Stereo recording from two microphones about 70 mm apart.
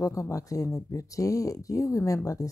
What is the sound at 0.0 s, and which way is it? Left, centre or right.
Speech, left.